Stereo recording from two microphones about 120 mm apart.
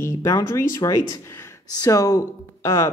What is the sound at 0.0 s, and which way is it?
Speech, 25° left (ahead or behind).